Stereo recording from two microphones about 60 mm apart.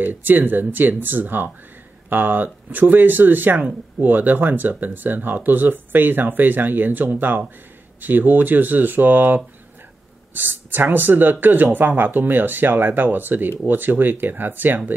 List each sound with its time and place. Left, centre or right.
0.0 s speech: right